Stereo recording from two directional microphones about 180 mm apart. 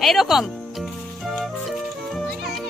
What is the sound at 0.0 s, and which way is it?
Speech, centre (ahead or behind).